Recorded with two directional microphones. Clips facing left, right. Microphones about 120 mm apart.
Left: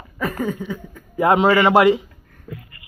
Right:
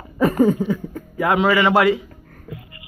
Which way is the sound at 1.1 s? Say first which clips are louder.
Left 2 dB; 25° left (ahead or behind).